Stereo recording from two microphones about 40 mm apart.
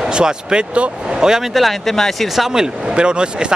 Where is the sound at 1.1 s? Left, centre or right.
Centre.